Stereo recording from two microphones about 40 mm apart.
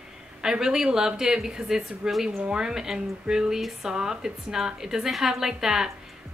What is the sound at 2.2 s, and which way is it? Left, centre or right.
A woman's voice, centre.